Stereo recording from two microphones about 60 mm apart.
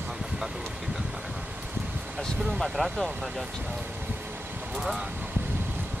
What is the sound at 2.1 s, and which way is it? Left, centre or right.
Speech, centre.